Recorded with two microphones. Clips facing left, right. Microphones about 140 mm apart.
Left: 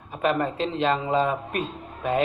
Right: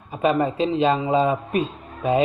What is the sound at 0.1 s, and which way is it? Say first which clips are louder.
Speech: right 4 dB; 10° right (ahead or behind).